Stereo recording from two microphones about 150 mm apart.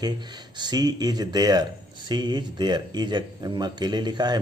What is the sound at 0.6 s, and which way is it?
Speech, 30° right (ahead or behind).